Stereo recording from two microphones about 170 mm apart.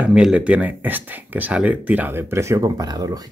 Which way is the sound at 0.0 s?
5° right (ahead or behind).